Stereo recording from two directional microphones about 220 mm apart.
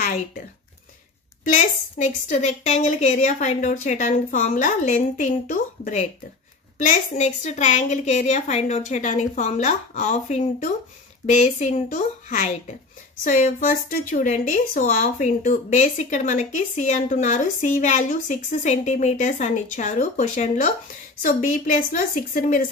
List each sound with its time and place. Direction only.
0.0 s speech: 35° left (ahead or behind)
1.4 s a woman's voice: 35° left (ahead or behind)